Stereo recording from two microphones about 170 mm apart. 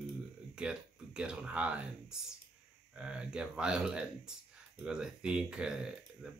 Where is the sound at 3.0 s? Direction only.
5° right (ahead or behind).